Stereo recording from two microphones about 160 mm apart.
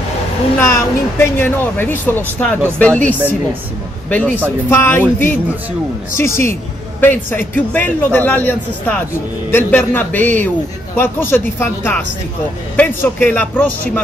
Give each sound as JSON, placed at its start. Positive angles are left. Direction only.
{"t": 0.6, "sound": "speech", "side_deg": 15}
{"t": 4.6, "sound": "speech", "side_deg": 15}